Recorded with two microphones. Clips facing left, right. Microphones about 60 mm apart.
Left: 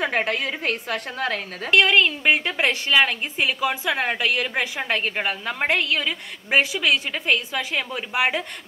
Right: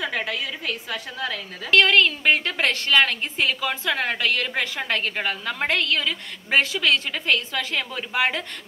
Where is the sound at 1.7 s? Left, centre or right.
Centre.